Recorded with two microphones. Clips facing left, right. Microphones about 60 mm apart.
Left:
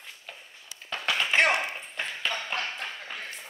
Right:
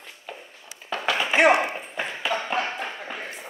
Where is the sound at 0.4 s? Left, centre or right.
Centre.